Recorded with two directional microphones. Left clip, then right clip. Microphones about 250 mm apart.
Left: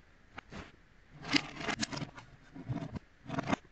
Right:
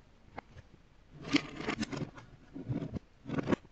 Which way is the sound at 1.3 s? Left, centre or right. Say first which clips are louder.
Even; right.